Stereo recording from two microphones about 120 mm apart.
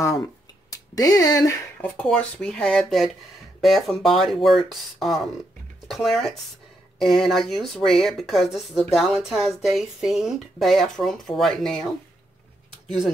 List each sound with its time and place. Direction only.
0.7 s speech: 30° left (ahead or behind)
1.8 s speech: 10° left (ahead or behind)